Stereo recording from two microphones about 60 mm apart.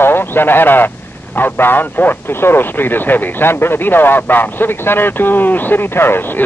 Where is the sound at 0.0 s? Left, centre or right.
Left.